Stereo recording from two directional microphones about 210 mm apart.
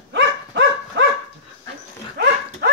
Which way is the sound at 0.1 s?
60° right (ahead or behind).